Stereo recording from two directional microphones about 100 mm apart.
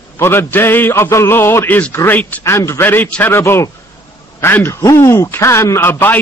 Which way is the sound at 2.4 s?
25° left (ahead or behind).